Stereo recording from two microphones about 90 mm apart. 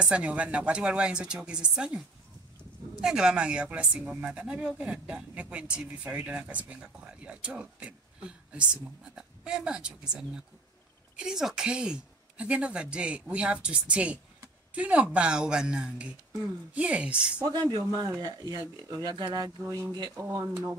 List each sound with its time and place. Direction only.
0.0 s speech: 10° right (ahead or behind)
17.4 s speech: 50° right (ahead or behind)
20.2 s speech: 30° right (ahead or behind)